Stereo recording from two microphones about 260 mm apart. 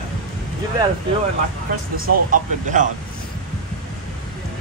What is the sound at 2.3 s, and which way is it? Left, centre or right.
Speech, right.